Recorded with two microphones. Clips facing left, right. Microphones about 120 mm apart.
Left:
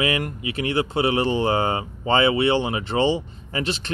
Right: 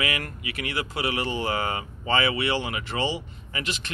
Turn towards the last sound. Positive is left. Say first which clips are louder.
# left 6 dB
turn(degrees=35)  # may be behind; listen again after turning